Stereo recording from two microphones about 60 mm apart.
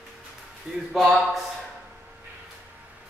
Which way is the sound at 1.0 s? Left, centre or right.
Centre.